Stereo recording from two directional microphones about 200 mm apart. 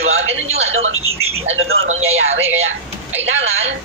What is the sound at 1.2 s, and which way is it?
Speech, 30° right (ahead or behind).